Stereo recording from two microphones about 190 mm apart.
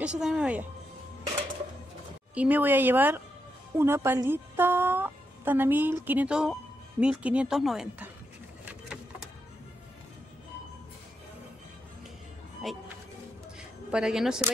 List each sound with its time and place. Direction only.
0.0 s speech: 5° right (ahead or behind)
2.3 s a woman's voice: 10° right (ahead or behind)
8.6 s a sound: 5° right (ahead or behind)
13.9 s speech: centre (ahead or behind)